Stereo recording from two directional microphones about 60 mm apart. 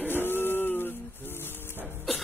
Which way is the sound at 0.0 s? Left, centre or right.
Left.